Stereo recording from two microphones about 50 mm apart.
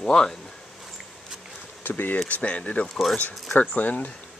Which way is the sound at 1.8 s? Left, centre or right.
Left.